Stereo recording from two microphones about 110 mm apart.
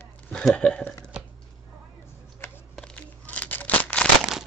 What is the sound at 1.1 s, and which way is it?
Chopping, 10° right (ahead or behind).